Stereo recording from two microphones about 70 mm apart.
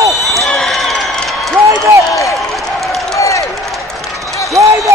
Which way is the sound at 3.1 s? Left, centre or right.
Left.